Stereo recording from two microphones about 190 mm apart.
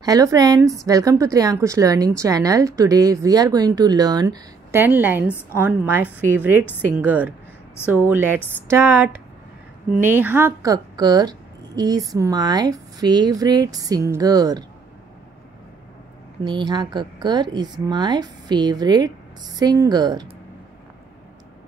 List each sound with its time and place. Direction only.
0.0 s a woman's voice: 20° right (ahead or behind)
16.4 s a woman's voice: 25° right (ahead or behind)